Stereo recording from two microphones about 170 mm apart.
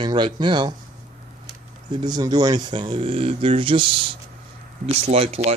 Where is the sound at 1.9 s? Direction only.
25° right (ahead or behind).